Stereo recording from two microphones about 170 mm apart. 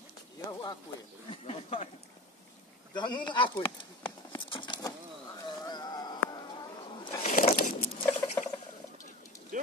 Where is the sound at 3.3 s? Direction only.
30° left (ahead or behind).